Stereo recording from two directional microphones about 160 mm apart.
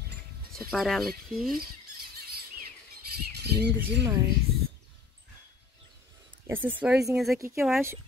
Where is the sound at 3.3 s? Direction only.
90° right.